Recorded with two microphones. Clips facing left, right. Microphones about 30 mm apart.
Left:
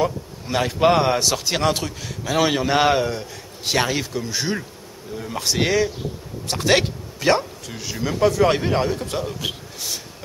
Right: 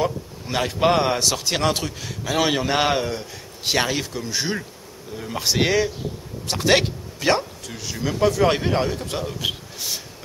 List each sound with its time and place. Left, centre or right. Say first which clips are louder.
0.0 s a man's voice: left 1 dB; centre